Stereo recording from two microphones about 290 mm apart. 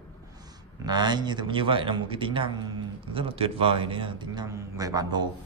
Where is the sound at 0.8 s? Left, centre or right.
Centre.